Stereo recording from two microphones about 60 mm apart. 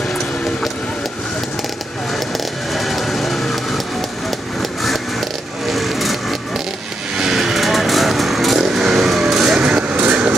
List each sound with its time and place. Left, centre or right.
2.7 s vehicle: centre
5.7 s a sound: centre
7.2 s vehicle: centre
9.6 s vehicle: centre